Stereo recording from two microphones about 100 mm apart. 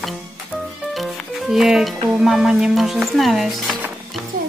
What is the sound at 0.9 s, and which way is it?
Speech, centre (ahead or behind).